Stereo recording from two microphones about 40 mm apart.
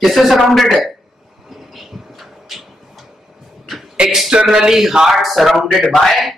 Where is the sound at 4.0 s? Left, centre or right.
Right.